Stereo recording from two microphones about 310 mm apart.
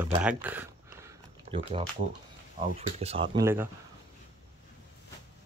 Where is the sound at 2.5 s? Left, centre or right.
Centre.